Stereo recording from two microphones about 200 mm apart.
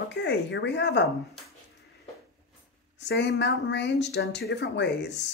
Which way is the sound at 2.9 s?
60° left (ahead or behind).